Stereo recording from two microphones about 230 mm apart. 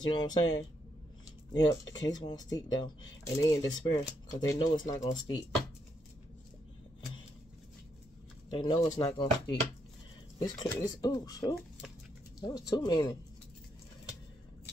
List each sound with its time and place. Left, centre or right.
0.1 s speech: centre
8.5 s speech: left